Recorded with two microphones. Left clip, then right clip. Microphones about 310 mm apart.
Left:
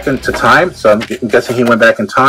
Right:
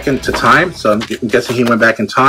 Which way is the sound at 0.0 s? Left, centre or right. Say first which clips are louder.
Left 1 dB; centre.